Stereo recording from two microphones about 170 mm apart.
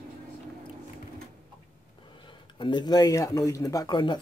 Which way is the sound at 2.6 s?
25° left (ahead or behind).